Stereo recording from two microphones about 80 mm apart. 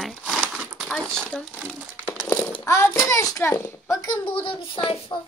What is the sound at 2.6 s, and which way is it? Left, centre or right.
A woman's voice, left.